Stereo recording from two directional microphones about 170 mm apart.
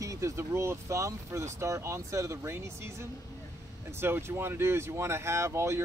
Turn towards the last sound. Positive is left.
turn(degrees=-15)  # may be behind; listen again after turning